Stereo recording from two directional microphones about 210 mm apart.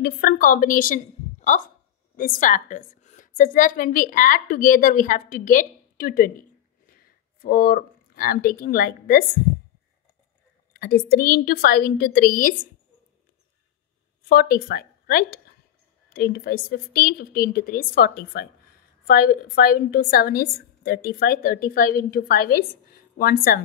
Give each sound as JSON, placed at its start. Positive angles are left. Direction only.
{"t": 0.0, "sound": "a woman's voice", "side_deg": 40}
{"t": 10.7, "sound": "a woman's voice", "side_deg": 45}
{"t": 14.3, "sound": "a woman's voice", "side_deg": 45}